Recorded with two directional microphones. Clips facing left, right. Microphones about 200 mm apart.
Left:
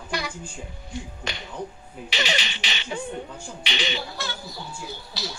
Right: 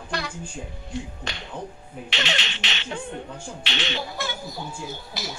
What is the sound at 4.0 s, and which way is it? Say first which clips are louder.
Speech: right 3 dB; 20° right (ahead or behind).